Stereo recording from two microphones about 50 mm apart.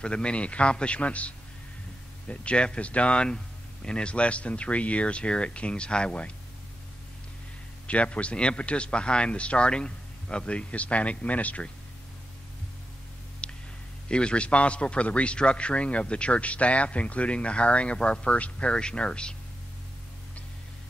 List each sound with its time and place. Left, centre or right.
0.0 s a man's voice: left
7.8 s a man's voice: left
13.4 s a sound: left
14.0 s a man's voice: centre